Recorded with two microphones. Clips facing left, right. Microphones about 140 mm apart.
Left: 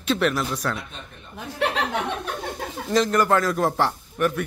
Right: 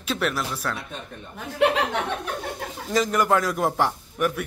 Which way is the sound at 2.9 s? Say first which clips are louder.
Left 2 dB; 5° right (ahead or behind).